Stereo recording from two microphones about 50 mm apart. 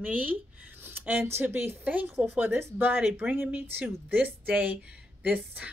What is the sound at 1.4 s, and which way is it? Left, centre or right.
Speech, right.